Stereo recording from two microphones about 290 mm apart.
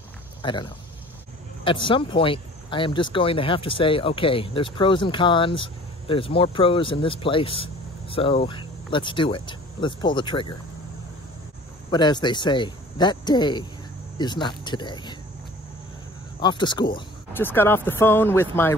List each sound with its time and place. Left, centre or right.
0.4 s speech: centre
11.9 s speech: centre
16.3 s speech: centre